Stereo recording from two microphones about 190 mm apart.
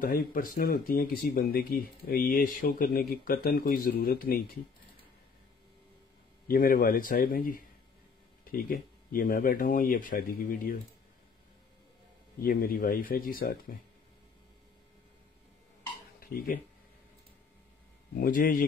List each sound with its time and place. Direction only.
0.0 s speech: 50° left (ahead or behind)
6.4 s speech: 50° left (ahead or behind)
12.4 s speech: 50° left (ahead or behind)
16.2 s a sound: 50° left (ahead or behind)
18.1 s speech: 45° left (ahead or behind)